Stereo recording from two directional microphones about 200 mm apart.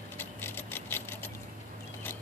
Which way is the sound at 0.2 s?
10° left (ahead or behind).